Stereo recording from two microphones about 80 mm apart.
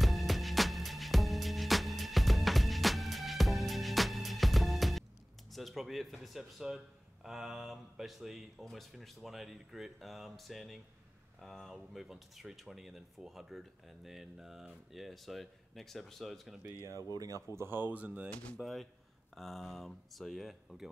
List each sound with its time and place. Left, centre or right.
0.0 s music: centre
5.5 s speech: centre
17.1 s speech: right
17.6 s speech: right
18.3 s speech: centre
18.6 s speech: centre